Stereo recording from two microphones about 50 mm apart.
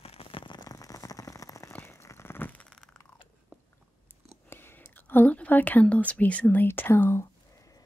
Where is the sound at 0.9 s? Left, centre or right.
Left.